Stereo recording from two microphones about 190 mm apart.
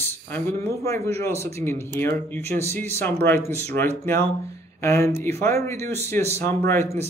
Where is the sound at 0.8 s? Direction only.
15° left (ahead or behind).